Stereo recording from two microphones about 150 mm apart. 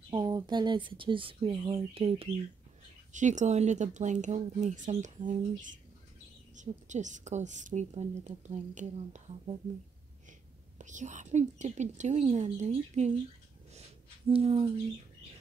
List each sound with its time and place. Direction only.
0.1 s speech: 30° right (ahead or behind)
3.1 s a woman's voice: 55° right (ahead or behind)
10.8 s a woman's voice: 55° right (ahead or behind)
13.7 s a sound: 40° right (ahead or behind)